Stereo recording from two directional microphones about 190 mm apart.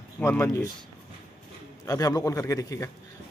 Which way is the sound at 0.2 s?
15° left (ahead or behind).